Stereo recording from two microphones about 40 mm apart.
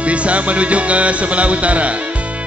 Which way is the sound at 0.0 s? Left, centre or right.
Right.